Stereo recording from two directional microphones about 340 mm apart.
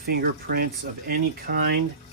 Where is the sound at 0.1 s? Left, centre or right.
Right.